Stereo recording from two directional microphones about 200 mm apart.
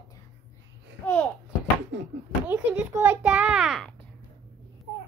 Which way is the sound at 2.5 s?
10° right (ahead or behind).